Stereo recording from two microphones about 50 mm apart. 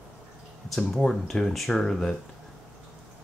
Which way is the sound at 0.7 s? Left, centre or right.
Centre.